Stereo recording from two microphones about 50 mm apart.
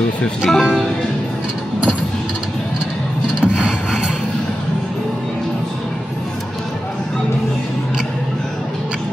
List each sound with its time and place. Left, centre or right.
0.5 s speech: centre
3.5 s wood: right